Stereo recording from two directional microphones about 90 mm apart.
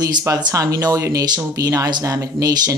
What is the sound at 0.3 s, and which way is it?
Speech, 45° right (ahead or behind).